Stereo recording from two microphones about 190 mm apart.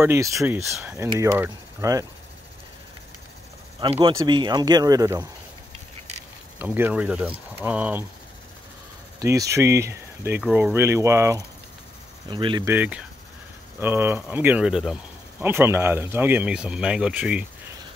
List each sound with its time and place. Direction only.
0.0 s speech: 15° right (ahead or behind)
4.0 s speech: 25° right (ahead or behind)
6.6 s speech: 10° right (ahead or behind)
9.2 s speech: 15° right (ahead or behind)
12.3 s speech: 25° right (ahead or behind)
12.6 s speech: 10° right (ahead or behind)